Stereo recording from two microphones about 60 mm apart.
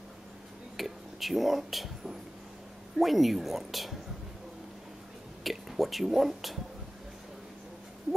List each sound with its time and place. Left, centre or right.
0.7 s a sound: centre
3.0 s a woman's voice: centre
5.4 s speech: centre